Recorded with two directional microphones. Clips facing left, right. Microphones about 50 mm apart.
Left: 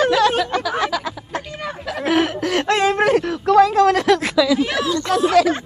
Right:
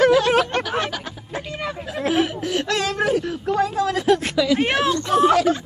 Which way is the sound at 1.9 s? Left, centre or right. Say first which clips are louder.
Left 3 dB; left.